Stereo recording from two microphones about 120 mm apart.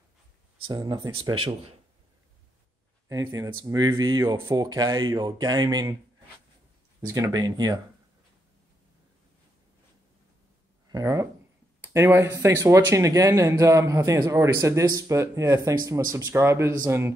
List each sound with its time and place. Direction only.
0.7 s speech: 35° right (ahead or behind)
3.1 s speech: 30° right (ahead or behind)
7.1 s speech: 25° right (ahead or behind)
10.9 s speech: 30° right (ahead or behind)